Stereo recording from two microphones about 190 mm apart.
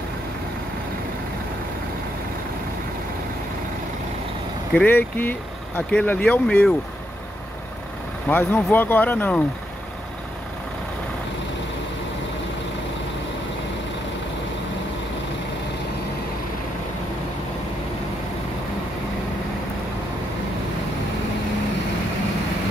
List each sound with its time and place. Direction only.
4.7 s speech: 10° left (ahead or behind)
8.3 s speech: 10° left (ahead or behind)